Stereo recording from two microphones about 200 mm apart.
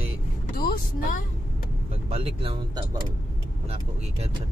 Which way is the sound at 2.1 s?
25° right (ahead or behind).